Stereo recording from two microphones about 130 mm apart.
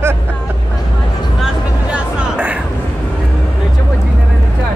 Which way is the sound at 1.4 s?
10° right (ahead or behind).